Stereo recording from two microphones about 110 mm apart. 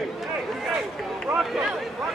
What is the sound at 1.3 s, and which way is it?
Speech, 5° right (ahead or behind).